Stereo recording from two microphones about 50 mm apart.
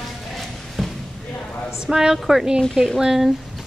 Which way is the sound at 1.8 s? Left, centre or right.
Centre.